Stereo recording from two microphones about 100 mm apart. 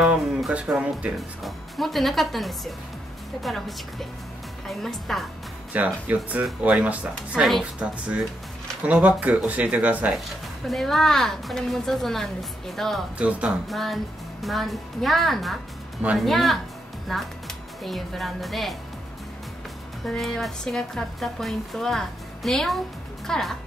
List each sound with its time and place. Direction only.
0.0 s speech: 10° right (ahead or behind)
5.7 s speech: 15° right (ahead or behind)
7.3 s speech: centre (ahead or behind)
8.8 s speech: 15° right (ahead or behind)
10.7 s speech: centre (ahead or behind)
13.2 s speech: 10° right (ahead or behind)
13.7 s speech: centre (ahead or behind)
20.1 s speech: 5° left (ahead or behind)